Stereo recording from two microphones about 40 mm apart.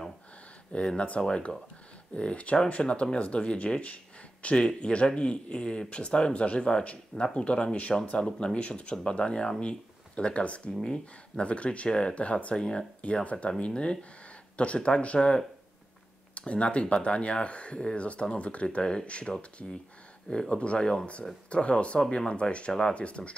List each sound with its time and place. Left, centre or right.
0.7 s speech: left
4.6 s speech: left
8.3 s speech: centre
8.5 s speech: left
10.8 s speech: centre
11.4 s speech: left
11.9 s speech: centre
12.2 s speech: left
12.5 s speech: left
13.0 s speech: left
22.7 s speech: centre
22.9 s speech: left